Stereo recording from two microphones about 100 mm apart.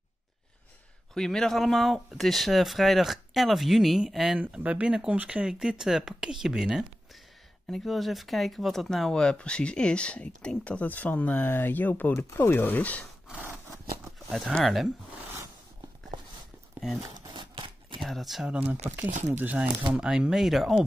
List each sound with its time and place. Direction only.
1.1 s speech: 5° left (ahead or behind)
4.4 s speech: 15° right (ahead or behind); by 13.0 s 15° left (ahead or behind)
14.3 s speech: centre (ahead or behind)
17.0 s a sound: 50° right (ahead or behind)
18.0 s speech: centre (ahead or behind)
18.9 s speech: 15° right (ahead or behind); by 20.8 s centre (ahead or behind)